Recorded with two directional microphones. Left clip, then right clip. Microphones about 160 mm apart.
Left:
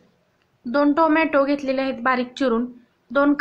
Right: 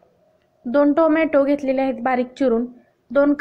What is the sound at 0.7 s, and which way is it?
A woman's voice, 20° right (ahead or behind).